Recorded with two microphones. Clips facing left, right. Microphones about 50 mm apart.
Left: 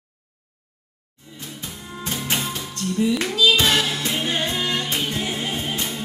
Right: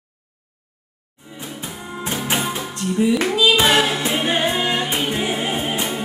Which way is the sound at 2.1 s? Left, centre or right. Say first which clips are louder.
Right 4 dB; centre.